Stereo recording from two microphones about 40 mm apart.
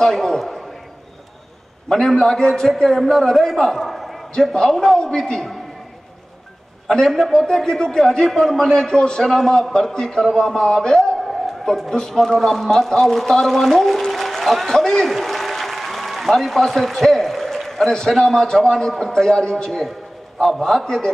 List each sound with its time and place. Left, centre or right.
0.0 s a sound: centre
2.0 s a man's voice: centre
3.0 s a man's voice: centre
3.5 s a sound: centre
4.5 s a man's voice: centre
7.1 s a man's voice: centre
7.4 s a man's voice: centre
11.2 s a sound: centre
11.9 s a man's voice: centre
15.2 s applause: centre
17.8 s a man's voice: centre
20.4 s a man's voice: centre
20.8 s a man's voice: centre